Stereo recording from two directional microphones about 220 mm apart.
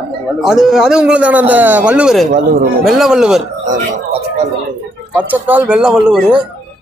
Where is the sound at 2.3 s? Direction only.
40° right (ahead or behind).